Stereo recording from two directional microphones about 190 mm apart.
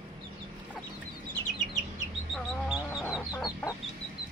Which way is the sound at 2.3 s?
5° right (ahead or behind).